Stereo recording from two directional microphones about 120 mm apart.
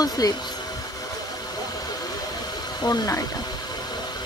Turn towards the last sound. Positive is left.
turn(degrees=30)  # may be behind; listen again after turning